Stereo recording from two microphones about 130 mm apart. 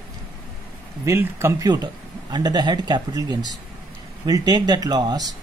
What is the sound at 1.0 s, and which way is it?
Speech, 20° right (ahead or behind).